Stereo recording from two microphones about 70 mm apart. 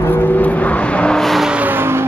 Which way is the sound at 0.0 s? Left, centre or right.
Left.